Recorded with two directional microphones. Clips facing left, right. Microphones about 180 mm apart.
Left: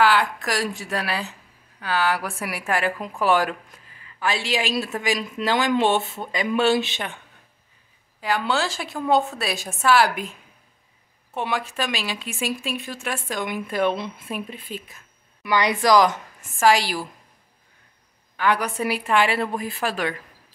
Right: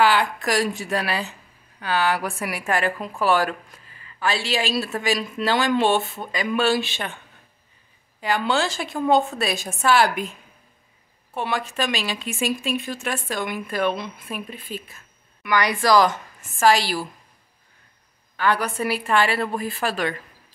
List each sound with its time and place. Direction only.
0.0 s a woman's voice: centre (ahead or behind); by 7.2 s 15° left (ahead or behind)
8.2 s a woman's voice: centre (ahead or behind)
11.3 s speech: 15° left (ahead or behind)
18.3 s speech: 15° left (ahead or behind)